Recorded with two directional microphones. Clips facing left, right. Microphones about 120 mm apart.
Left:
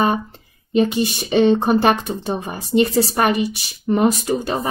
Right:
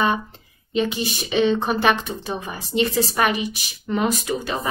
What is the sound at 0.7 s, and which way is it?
Speech, 40° left (ahead or behind).